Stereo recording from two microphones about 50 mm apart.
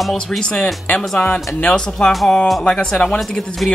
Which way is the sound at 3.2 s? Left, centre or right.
Centre.